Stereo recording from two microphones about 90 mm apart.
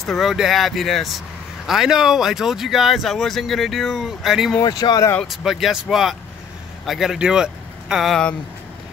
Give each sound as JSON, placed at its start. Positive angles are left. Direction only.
{"t": 0.0, "sound": "speech", "side_deg": 0}
{"t": 4.6, "sound": "speech", "side_deg": 45}
{"t": 5.2, "sound": "speech", "side_deg": 0}